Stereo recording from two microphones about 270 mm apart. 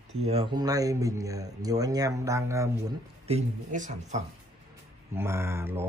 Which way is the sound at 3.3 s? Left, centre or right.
Right.